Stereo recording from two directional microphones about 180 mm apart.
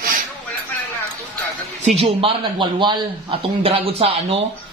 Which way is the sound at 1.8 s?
35° right (ahead or behind).